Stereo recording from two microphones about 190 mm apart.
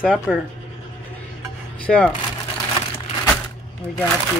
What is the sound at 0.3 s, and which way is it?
Speech, centre (ahead or behind).